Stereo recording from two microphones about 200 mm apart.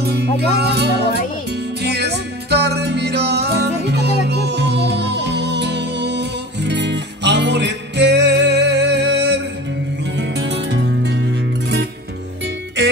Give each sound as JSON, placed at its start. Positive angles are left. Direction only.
{"t": 0.0, "sound": "music", "side_deg": -55}